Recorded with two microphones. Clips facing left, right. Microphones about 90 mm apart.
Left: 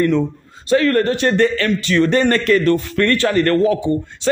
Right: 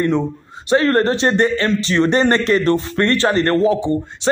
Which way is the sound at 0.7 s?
30° right (ahead or behind).